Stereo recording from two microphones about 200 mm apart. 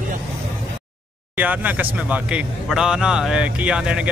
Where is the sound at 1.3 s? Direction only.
10° right (ahead or behind).